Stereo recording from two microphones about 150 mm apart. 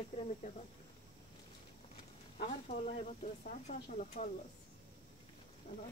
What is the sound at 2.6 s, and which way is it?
Speech, 50° left (ahead or behind).